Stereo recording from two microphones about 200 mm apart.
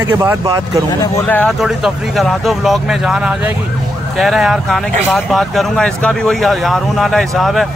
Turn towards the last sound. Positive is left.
turn(degrees=0)  # may be behind; listen again after turning